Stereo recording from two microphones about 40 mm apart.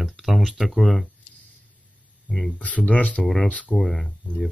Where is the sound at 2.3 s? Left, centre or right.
Centre.